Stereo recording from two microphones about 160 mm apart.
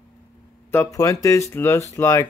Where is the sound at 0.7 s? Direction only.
15° left (ahead or behind).